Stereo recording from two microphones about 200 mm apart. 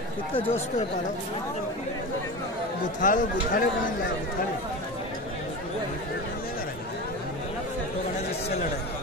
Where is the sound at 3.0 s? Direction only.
40° left (ahead or behind).